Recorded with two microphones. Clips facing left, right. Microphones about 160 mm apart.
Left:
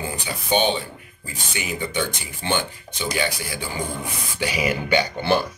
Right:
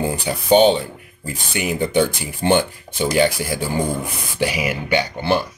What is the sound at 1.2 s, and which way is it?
Speech, 65° right (ahead or behind).